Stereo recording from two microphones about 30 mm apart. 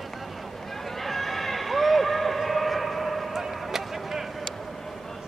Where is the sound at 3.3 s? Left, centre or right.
Centre.